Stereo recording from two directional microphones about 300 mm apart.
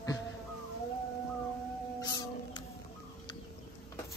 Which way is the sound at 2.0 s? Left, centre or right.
Centre.